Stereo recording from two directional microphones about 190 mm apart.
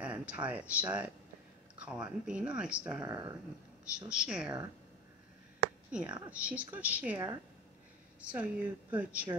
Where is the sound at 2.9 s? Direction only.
20° right (ahead or behind).